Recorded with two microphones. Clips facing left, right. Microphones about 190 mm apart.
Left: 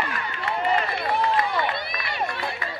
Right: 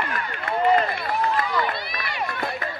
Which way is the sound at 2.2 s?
50° right (ahead or behind).